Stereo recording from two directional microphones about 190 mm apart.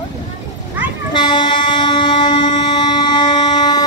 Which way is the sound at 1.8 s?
25° left (ahead or behind).